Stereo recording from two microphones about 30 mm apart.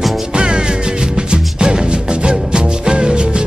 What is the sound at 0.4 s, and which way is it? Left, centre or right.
Music, right.